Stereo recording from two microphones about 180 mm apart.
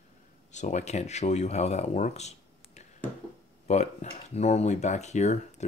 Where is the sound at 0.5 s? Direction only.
40° left (ahead or behind).